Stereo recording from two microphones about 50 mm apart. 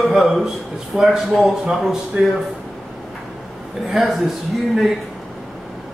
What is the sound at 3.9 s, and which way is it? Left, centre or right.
Speech, centre.